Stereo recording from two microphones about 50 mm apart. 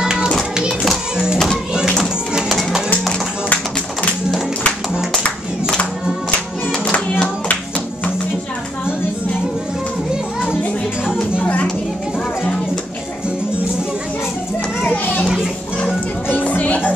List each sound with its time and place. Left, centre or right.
0.0 s music: centre
6.7 s music: left
14.8 s children playing: left
16.3 s music: left